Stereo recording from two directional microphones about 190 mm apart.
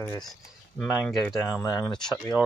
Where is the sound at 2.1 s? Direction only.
20° left (ahead or behind).